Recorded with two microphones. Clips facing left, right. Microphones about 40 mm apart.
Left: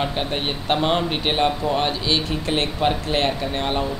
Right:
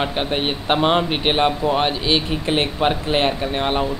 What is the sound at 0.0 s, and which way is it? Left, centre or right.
Speech, right.